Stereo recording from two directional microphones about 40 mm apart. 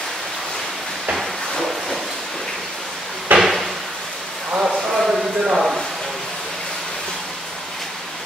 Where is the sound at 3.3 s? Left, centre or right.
Centre.